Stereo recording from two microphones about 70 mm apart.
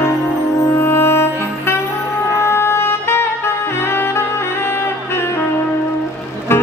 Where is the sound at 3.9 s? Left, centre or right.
Left.